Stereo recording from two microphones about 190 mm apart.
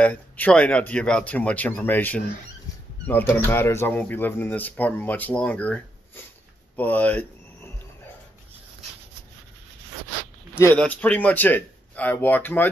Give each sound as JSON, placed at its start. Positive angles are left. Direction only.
{"t": 0.0, "sound": "speech", "side_deg": 5}
{"t": 6.8, "sound": "speech", "side_deg": 10}
{"t": 10.6, "sound": "speech", "side_deg": 10}